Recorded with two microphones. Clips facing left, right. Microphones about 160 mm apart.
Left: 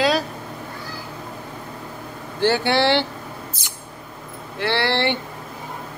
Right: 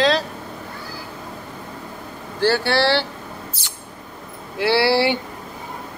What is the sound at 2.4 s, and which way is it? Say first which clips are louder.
Speech: even; 20° left (ahead or behind).